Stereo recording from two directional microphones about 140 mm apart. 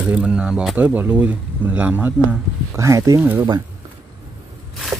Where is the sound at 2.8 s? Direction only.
20° right (ahead or behind).